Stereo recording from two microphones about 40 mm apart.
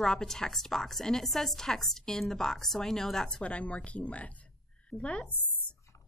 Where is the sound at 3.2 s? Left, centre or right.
Left.